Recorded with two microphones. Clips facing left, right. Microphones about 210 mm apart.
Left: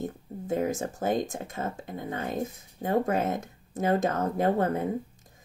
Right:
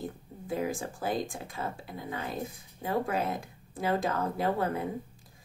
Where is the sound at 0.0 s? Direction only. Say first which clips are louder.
Left 5 dB; 45° left (ahead or behind).